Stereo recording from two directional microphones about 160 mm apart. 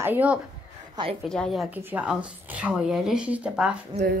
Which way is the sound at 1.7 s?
10° right (ahead or behind).